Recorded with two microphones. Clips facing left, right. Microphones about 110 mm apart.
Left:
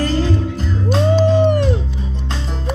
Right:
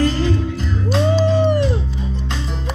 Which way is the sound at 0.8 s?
50° left (ahead or behind).